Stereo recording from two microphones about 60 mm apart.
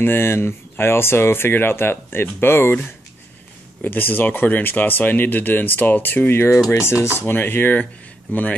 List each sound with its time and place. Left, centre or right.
0.0 s speech: left
3.8 s speech: left
6.7 s speech: left
7.2 s speech: left